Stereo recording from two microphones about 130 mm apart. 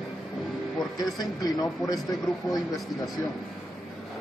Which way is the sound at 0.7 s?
30° left (ahead or behind).